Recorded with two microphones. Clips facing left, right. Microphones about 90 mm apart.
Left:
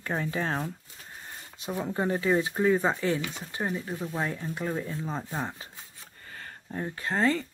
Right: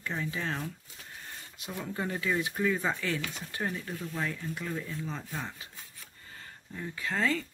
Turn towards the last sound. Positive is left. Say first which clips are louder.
# left 4 dB
turn(degrees=35)  # may be behind; listen again after turning